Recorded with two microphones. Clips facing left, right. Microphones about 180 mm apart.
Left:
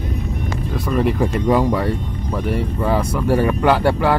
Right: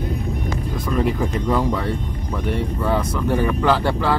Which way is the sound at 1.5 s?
15° left (ahead or behind).